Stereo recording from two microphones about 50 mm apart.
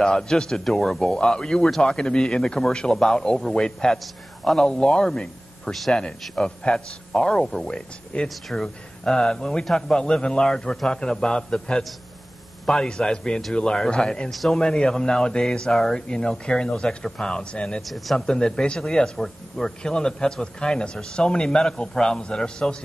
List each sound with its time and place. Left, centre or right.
0.0 s a man's voice: centre
14.3 s speech: centre
14.6 s a man's voice: centre
17.8 s speech: centre
18.1 s a man's voice: centre